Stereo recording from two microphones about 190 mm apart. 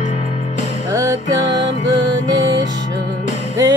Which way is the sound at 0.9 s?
15° right (ahead or behind).